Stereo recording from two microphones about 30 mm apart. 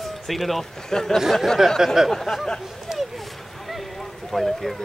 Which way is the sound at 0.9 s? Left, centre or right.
Centre.